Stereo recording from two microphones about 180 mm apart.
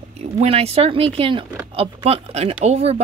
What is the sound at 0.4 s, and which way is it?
Speech, 35° right (ahead or behind).